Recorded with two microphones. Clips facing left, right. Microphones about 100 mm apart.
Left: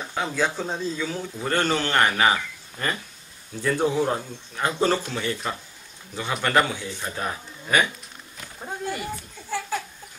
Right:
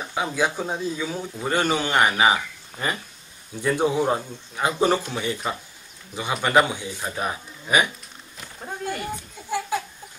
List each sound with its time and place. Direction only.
0.0 s a man's voice: 15° right (ahead or behind)
8.5 s a sound: 5° left (ahead or behind)
9.1 s children playing: 15° right (ahead or behind)